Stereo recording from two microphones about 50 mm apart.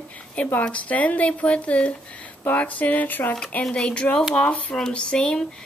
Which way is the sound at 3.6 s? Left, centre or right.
Centre.